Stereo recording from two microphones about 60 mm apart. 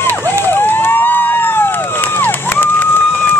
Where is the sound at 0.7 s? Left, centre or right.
Left.